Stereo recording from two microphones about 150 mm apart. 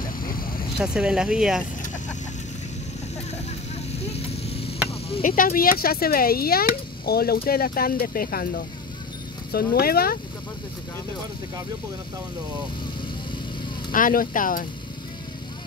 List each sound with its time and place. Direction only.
0.0 s vehicle: 75° left (ahead or behind)
0.7 s speech: 5° right (ahead or behind)
4.0 s vehicle: 45° left (ahead or behind)
5.2 s speech: 70° left (ahead or behind); by 10.1 s 85° left
13.9 s speech: 70° left (ahead or behind)